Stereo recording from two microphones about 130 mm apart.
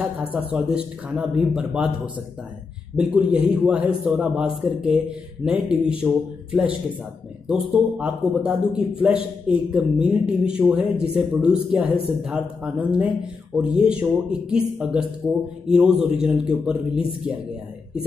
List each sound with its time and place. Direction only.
0.0 s speech: 10° right (ahead or behind)
3.0 s speech: 10° right (ahead or behind)
7.4 s speech: 10° right (ahead or behind)
15.6 s a man's voice: 5° right (ahead or behind)